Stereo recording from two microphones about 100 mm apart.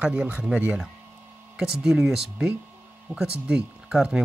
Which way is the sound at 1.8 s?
5° right (ahead or behind).